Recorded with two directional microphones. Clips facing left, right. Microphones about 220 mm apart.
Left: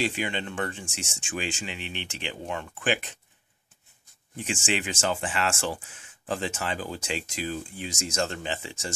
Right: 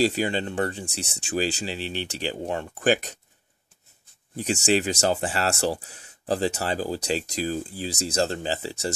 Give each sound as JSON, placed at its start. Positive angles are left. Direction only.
{"t": 0.0, "sound": "speech", "side_deg": -40}
{"t": 4.4, "sound": "speech", "side_deg": -40}